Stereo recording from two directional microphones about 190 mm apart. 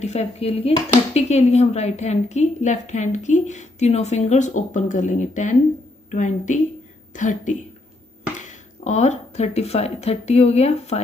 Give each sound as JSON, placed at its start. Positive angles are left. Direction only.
{"t": 0.0, "sound": "speech", "side_deg": 35}